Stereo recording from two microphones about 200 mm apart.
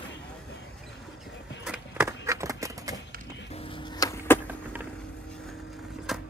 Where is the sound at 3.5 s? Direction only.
25° left (ahead or behind).